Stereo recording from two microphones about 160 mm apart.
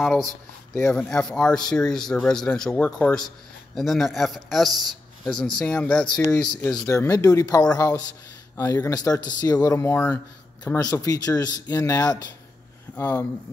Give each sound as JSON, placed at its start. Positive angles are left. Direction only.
{"t": 0.0, "sound": "speech", "side_deg": 0}
{"t": 6.3, "sound": "speech", "side_deg": 20}